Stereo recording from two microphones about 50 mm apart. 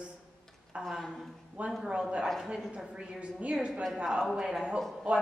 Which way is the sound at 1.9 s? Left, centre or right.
Right.